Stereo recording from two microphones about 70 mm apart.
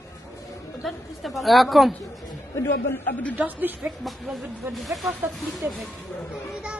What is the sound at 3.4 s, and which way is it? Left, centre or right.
Speech, right.